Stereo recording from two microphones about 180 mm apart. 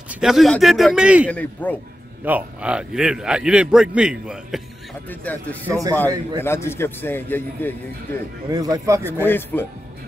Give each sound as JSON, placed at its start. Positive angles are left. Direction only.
{"t": 0.1, "sound": "a man's voice", "side_deg": 0}
{"t": 1.3, "sound": "a man's voice", "side_deg": 10}
{"t": 2.2, "sound": "a man's voice", "side_deg": -10}
{"t": 5.2, "sound": "a man's voice", "side_deg": 10}
{"t": 8.5, "sound": "a man's voice", "side_deg": -20}
{"t": 9.2, "sound": "a man's voice", "side_deg": 10}